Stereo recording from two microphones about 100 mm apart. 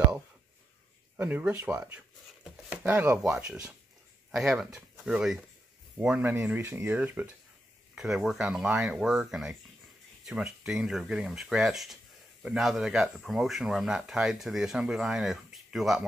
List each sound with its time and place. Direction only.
1.1 s speech: 15° right (ahead or behind)
5.9 s speech: 15° right (ahead or behind)
7.9 s speech: 5° right (ahead or behind)